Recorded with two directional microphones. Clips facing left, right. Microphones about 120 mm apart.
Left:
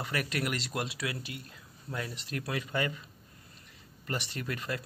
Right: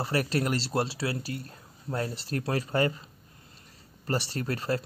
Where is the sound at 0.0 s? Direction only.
35° right (ahead or behind).